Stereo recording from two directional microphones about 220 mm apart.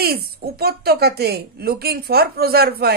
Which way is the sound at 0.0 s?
45° right (ahead or behind).